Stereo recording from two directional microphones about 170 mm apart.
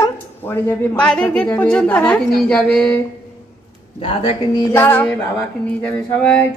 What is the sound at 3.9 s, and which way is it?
Speech, 35° left (ahead or behind).